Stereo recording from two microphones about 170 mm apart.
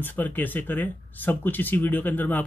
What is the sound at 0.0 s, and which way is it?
Speech, 10° left (ahead or behind).